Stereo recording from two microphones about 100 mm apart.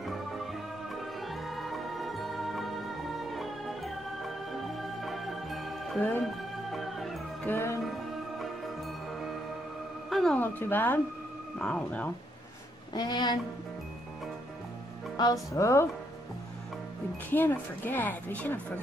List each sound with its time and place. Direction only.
0.0 s music: centre (ahead or behind)
5.9 s speech: 15° left (ahead or behind)
6.2 s music: centre (ahead or behind)
7.4 s speech: 25° left (ahead or behind)
7.8 s music: centre (ahead or behind)
10.0 s music: centre (ahead or behind)
10.3 s speech: 20° left (ahead or behind)
12.9 s a woman's voice: 45° left (ahead or behind)
15.2 s speech: 40° left (ahead or behind)
15.5 s speech: 30° left (ahead or behind)
17.3 s speech: 20° left (ahead or behind)